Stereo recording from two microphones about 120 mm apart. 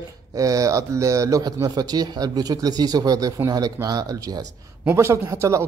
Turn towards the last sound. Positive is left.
turn(degrees=-25)  # may be behind; listen again after turning